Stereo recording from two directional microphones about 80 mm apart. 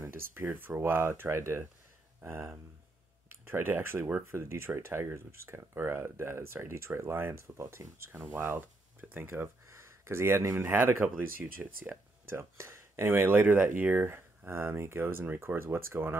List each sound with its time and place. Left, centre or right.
0.1 s speech: right
7.4 s speech: right
8.2 s speech: right
12.3 s speech: right